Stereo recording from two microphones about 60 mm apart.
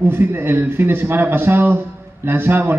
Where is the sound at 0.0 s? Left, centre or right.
Right.